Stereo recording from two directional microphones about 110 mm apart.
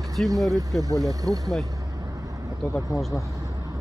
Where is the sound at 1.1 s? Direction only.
35° right (ahead or behind).